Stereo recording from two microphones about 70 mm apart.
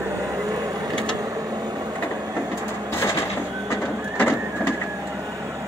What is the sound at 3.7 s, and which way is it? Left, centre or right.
Printer, left.